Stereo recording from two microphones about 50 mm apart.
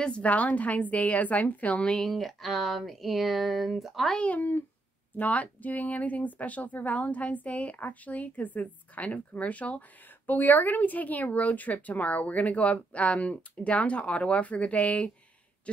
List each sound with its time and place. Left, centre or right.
0.0 s speech: left
2.0 s speech: centre
5.1 s speech: left